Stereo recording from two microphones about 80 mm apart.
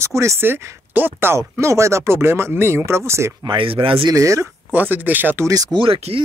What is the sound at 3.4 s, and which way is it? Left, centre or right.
Speech, right.